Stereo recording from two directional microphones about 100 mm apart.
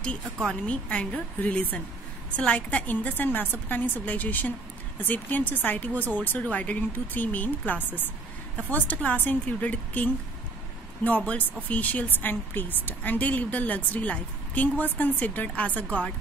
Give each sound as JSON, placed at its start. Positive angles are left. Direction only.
{"t": 0.0, "sound": "a woman's voice", "side_deg": 10}